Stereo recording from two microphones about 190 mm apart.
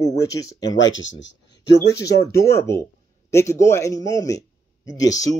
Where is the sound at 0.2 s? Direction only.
20° left (ahead or behind).